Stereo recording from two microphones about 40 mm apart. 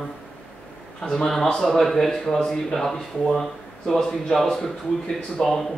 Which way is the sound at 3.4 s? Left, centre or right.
Centre.